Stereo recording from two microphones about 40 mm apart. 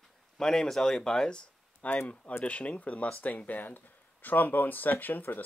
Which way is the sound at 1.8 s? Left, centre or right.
Left.